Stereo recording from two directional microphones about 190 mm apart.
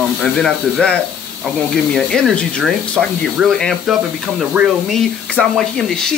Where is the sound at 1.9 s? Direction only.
Centre (ahead or behind).